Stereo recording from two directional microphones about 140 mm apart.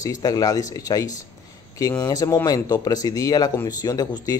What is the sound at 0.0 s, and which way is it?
Speech, 25° left (ahead or behind).